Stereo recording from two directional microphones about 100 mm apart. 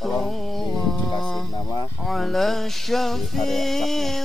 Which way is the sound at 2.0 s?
Centre (ahead or behind).